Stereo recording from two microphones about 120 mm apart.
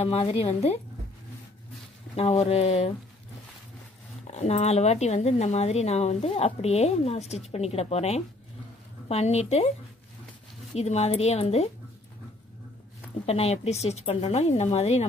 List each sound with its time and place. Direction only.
0.0 s speech: 55° left (ahead or behind)
2.1 s speech: 55° left (ahead or behind)
4.3 s speech: 65° left (ahead or behind)
10.7 s speech: 65° left (ahead or behind)
13.2 s speech: 60° left (ahead or behind)